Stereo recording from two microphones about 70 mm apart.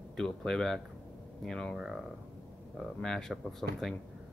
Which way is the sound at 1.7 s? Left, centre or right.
Centre.